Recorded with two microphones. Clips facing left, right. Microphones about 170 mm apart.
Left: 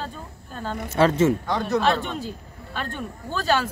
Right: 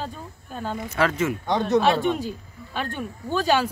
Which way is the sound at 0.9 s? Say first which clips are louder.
Left 5 dB; 25° left (ahead or behind).